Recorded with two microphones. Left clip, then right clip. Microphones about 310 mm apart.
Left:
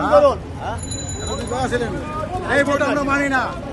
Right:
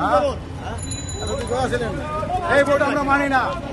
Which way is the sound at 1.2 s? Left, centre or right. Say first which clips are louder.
Right 1 dB; centre.